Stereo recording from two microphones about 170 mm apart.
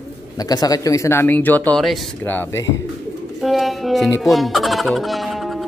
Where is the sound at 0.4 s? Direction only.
20° left (ahead or behind).